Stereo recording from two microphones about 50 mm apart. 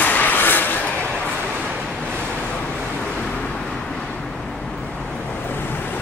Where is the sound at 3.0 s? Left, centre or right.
Centre.